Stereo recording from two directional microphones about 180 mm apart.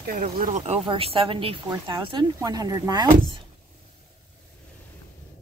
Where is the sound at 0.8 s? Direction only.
30° right (ahead or behind).